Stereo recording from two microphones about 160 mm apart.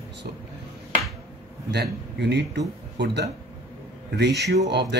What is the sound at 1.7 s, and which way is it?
Speech, 90° right.